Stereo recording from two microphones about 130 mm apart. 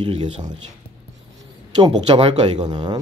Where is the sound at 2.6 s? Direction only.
35° right (ahead or behind).